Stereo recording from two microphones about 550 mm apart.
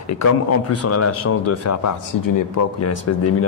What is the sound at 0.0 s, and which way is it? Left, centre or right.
Speech, left.